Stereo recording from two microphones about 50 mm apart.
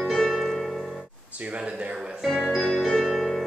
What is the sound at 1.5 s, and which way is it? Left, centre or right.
Speech, right.